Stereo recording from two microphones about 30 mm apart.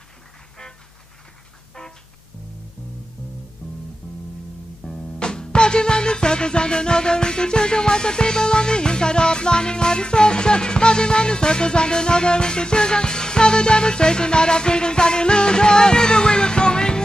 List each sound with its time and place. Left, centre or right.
4.8 s music: left